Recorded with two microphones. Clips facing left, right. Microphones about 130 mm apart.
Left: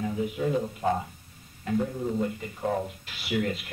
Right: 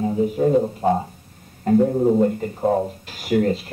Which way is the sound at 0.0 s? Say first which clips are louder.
Right 9 dB; 35° right (ahead or behind).